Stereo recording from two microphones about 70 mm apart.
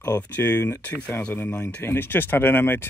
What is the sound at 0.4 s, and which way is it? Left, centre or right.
Speech, left.